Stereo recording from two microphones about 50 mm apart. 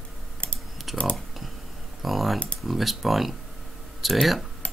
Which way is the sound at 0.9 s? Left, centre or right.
Centre.